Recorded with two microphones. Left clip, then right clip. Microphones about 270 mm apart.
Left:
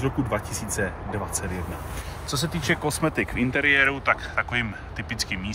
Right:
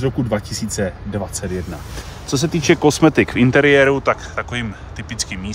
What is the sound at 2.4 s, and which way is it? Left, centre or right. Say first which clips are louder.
Speech: right 11 dB; right.